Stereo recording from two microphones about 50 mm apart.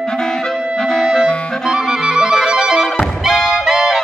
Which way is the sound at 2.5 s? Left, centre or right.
Centre.